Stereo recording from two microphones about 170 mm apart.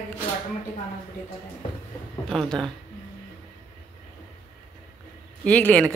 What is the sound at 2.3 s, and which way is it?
Speech, 5° left (ahead or behind).